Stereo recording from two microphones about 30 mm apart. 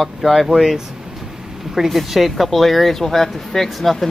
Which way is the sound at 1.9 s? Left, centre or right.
Centre.